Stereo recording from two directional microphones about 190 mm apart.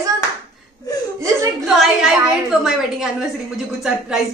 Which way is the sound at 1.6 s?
Centre (ahead or behind).